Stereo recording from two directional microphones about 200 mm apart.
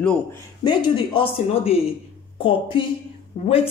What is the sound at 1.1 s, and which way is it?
Speech, 30° left (ahead or behind).